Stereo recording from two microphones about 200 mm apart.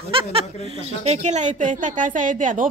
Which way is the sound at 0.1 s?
30° right (ahead or behind).